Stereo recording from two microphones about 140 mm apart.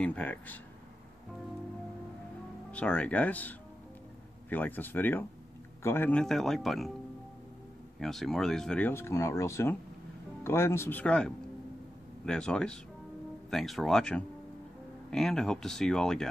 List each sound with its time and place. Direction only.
0.0 s speech: 10° left (ahead or behind)
2.7 s speech: 10° left (ahead or behind)
8.0 s speech: centre (ahead or behind)